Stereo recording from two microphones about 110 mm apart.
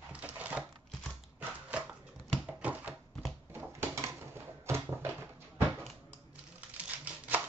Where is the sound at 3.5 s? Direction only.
20° right (ahead or behind).